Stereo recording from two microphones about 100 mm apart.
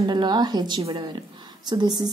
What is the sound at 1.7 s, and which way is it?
Speech, 45° right (ahead or behind).